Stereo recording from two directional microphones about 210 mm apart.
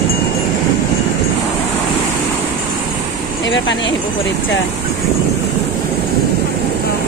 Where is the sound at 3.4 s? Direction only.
60° left (ahead or behind).